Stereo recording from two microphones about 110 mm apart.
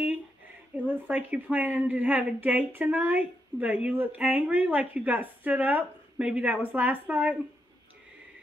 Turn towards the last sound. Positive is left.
turn(degrees=-15)  # may be behind; listen again after turning